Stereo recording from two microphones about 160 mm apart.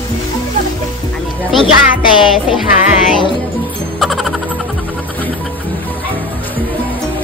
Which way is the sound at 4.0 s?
Centre (ahead or behind).